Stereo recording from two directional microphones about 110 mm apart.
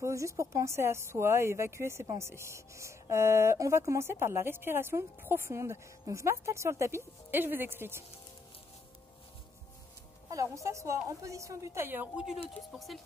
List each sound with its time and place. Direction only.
0.0 s speech: 25° right (ahead or behind)
10.3 s speech: 30° right (ahead or behind)
12.4 s speech: centre (ahead or behind)